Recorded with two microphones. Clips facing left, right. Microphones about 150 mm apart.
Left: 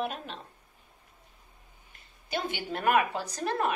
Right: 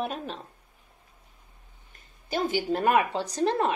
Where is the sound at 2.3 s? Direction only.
40° right (ahead or behind).